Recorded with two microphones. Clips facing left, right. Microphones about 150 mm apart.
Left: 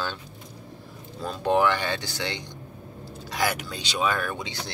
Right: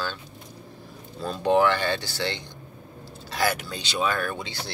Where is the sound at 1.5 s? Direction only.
15° left (ahead or behind).